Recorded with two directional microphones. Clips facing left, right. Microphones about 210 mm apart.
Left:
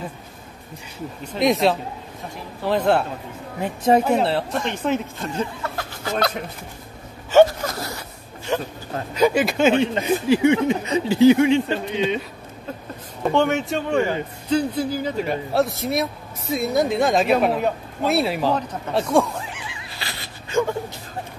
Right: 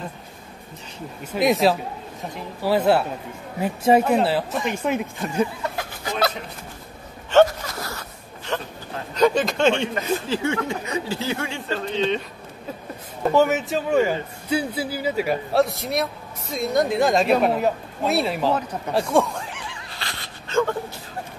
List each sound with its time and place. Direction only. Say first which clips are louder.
1.2 s speech: even; 5° right (ahead or behind)
8.5 s speech: left 4 dB; 10° left (ahead or behind)
13.3 s speech: right 1 dB; 5° right (ahead or behind)
19.1 s neigh: left 3 dB; centre (ahead or behind)